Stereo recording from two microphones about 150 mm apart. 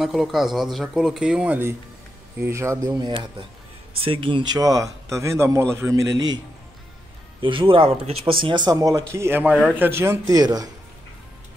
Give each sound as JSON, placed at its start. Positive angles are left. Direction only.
{"t": 0.0, "sound": "a man's voice", "side_deg": 0}
{"t": 7.4, "sound": "a man's voice", "side_deg": -35}